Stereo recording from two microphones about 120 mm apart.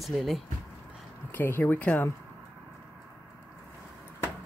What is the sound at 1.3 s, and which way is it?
Speech, 15° left (ahead or behind).